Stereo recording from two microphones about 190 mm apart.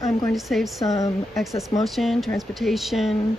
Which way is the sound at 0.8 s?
15° left (ahead or behind).